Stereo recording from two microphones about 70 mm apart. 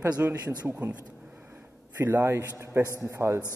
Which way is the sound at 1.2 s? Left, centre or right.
Right.